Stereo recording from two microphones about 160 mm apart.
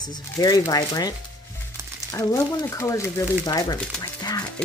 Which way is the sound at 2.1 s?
20° left (ahead or behind).